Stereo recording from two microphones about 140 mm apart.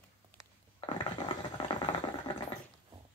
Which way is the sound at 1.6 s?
35° left (ahead or behind).